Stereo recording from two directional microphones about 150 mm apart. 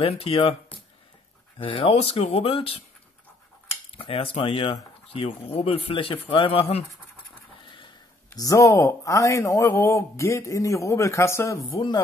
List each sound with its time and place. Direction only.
0.0 s speech: 40° left (ahead or behind)
1.6 s speech: 35° left (ahead or behind)
4.0 s speech: 35° left (ahead or behind)
8.3 s a man's voice: 20° left (ahead or behind)